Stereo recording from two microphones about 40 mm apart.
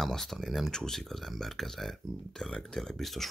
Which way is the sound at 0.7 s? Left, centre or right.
Centre.